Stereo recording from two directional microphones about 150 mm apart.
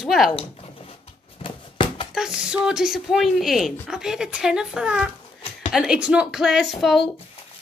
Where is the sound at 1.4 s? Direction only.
35° left (ahead or behind).